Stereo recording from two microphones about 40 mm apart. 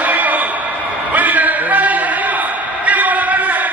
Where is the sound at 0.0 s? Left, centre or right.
Right.